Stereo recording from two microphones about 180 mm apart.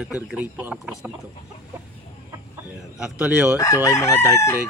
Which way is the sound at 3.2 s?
5° right (ahead or behind).